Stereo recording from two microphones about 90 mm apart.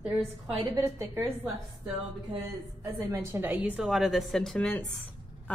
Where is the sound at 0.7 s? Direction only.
35° right (ahead or behind).